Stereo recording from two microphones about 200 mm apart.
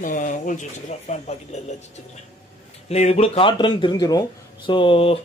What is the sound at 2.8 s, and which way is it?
Speech, 30° left (ahead or behind).